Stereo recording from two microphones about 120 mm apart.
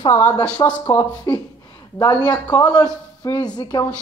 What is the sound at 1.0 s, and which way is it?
Speech, 40° left (ahead or behind).